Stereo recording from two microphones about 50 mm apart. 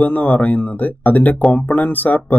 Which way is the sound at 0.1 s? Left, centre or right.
Left.